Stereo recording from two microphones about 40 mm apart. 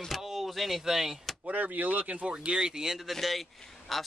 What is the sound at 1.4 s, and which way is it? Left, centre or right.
Speech, right.